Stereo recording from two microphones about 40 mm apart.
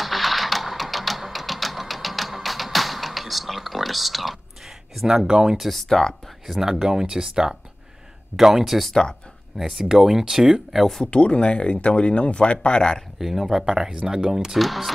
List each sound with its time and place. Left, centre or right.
0.0 s music: centre
5.0 s speech: centre
5.6 s speech: centre
5.9 s speech: centre
6.6 s speech: centre
11.1 s speech: left
13.2 s speech: centre
14.6 s speech: centre